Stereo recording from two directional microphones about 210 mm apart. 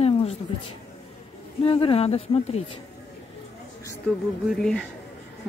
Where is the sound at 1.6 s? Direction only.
25° left (ahead or behind).